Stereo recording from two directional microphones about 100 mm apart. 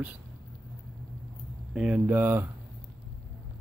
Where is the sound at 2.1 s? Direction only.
20° right (ahead or behind).